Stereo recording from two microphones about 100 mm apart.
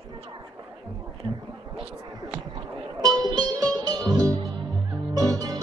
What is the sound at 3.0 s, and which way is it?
Music, 40° right (ahead or behind).